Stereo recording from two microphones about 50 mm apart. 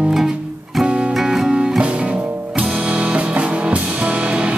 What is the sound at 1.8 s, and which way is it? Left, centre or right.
Music, right.